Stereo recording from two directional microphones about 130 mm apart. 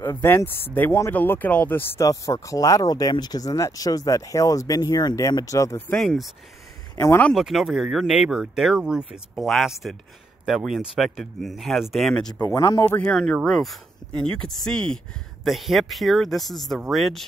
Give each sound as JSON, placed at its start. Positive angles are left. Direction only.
{"t": 0.0, "sound": "speech", "side_deg": 20}
{"t": 5.9, "sound": "speech", "side_deg": 5}
{"t": 7.0, "sound": "speech", "side_deg": 20}
{"t": 7.3, "sound": "speech", "side_deg": 0}
{"t": 12.4, "sound": "speech", "side_deg": 25}
{"t": 12.8, "sound": "speech", "side_deg": 15}